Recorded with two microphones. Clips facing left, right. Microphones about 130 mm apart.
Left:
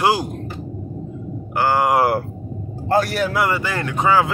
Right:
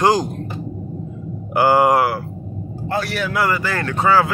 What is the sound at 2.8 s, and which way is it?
Speech, 40° left (ahead or behind).